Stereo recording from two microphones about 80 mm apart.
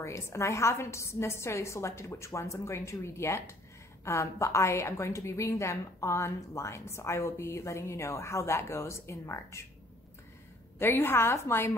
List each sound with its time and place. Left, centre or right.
0.0 s a woman's voice: left
10.8 s a woman's voice: left